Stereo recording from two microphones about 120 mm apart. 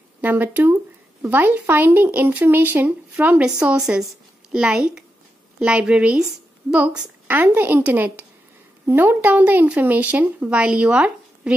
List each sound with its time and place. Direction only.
0.2 s speech: 15° right (ahead or behind)